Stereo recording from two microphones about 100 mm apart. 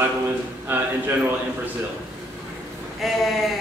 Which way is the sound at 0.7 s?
20° right (ahead or behind).